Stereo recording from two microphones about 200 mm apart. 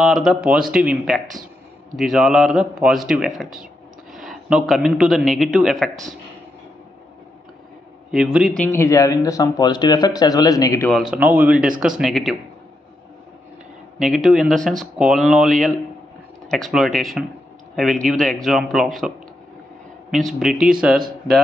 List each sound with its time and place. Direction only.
0.0 s speech: centre (ahead or behind)
8.1 s speech: 5° right (ahead or behind)
8.7 s speech: 15° left (ahead or behind)
10.9 s speech: centre (ahead or behind)
13.9 s speech: centre (ahead or behind)